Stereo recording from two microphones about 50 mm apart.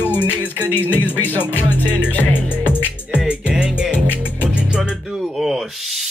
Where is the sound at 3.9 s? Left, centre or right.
Left.